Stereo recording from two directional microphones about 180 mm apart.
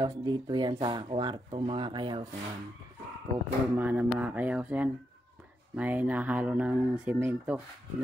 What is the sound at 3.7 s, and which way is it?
Speech, 10° right (ahead or behind).